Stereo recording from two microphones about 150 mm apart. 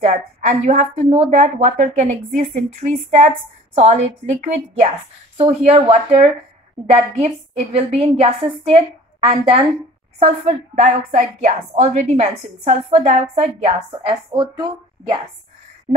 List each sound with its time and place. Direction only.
0.0 s a woman's voice: 50° right (ahead or behind)
13.7 s a woman's voice: 30° right (ahead or behind)